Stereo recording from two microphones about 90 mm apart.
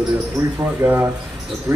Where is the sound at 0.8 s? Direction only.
20° right (ahead or behind).